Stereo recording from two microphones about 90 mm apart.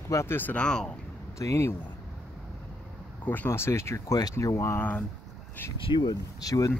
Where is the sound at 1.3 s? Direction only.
35° left (ahead or behind).